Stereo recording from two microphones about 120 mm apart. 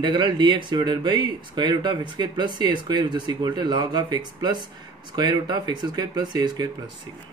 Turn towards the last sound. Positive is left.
turn(degrees=-35)  # may be behind; listen again after turning